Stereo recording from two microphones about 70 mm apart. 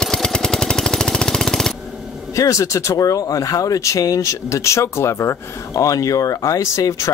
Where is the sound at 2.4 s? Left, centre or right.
Left.